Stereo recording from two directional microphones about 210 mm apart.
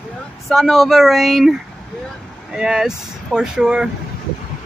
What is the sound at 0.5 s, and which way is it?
Speech, centre (ahead or behind).